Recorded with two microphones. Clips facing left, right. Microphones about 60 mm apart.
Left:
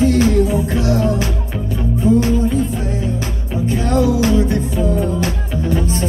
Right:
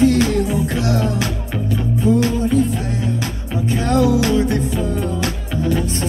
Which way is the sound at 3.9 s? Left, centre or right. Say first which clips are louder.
Even; left.